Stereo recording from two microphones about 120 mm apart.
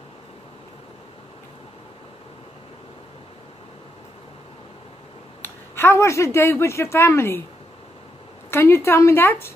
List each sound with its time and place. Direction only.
5.4 s speech: 20° left (ahead or behind)
8.5 s a woman's voice: 20° left (ahead or behind)